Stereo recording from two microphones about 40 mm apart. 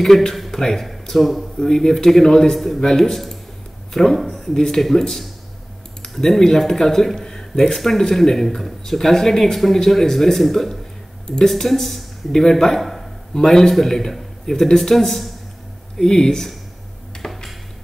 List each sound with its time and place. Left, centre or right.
0.0 s speech: centre
4.6 s speech: centre
17.2 s a sound: centre